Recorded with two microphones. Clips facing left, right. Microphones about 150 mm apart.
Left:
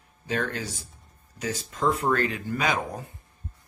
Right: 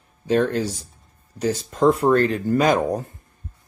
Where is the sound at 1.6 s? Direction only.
45° right (ahead or behind).